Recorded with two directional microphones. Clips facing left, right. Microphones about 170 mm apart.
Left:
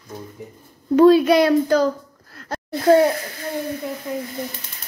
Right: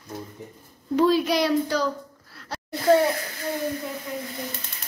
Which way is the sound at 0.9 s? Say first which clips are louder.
Left 8 dB; 60° left (ahead or behind).